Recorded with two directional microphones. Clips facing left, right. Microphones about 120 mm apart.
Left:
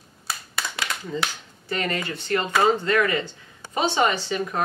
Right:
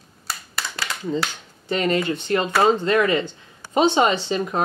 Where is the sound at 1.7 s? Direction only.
20° right (ahead or behind).